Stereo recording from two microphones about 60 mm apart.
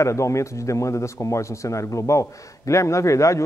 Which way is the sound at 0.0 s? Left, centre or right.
Left.